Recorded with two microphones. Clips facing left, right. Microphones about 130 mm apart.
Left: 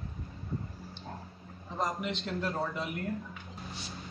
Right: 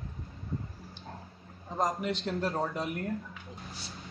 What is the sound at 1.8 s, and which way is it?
A man's voice, 40° right (ahead or behind).